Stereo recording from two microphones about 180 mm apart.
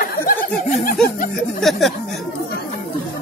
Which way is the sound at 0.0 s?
50° left (ahead or behind).